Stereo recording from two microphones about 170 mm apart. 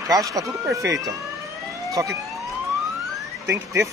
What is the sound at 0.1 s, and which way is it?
Speech, 20° right (ahead or behind).